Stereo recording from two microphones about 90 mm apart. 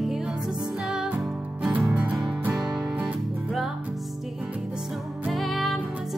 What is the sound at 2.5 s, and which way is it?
Music, 5° right (ahead or behind).